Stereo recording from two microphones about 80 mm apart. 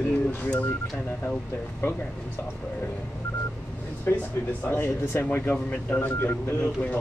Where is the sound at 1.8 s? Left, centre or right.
Left.